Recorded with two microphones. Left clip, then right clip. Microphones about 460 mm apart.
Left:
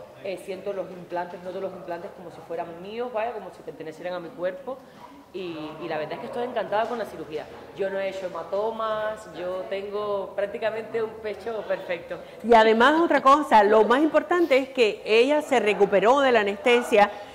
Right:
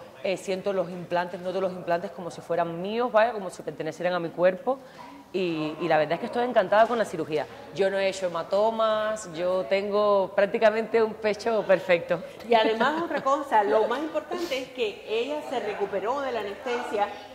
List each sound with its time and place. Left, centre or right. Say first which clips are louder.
0.2 s a woman's voice: right 5 dB; right
8.7 s speech: right 3 dB; right
9.7 s a man's voice: right 8 dB; right
12.4 s a woman's voice: left 6 dB; left